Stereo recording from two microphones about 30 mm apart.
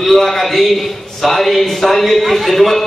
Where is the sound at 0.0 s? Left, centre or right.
Centre.